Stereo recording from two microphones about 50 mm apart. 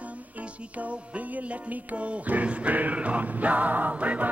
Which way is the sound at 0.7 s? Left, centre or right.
Right.